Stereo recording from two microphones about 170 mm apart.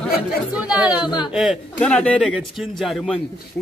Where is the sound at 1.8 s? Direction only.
10° left (ahead or behind).